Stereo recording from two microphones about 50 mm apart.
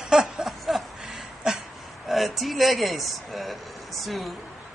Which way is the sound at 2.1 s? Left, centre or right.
Centre.